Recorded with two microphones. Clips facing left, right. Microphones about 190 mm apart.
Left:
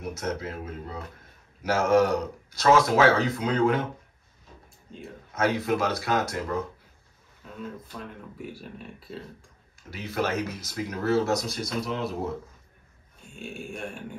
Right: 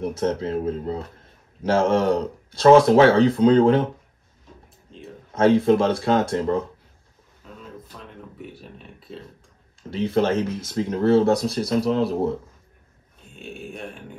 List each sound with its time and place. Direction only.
0.0 s speech: 30° right (ahead or behind)
5.3 s speech: 30° right (ahead or behind)
8.0 s speech: centre (ahead or behind)
9.8 s speech: 30° right (ahead or behind)
13.4 s speech: centre (ahead or behind)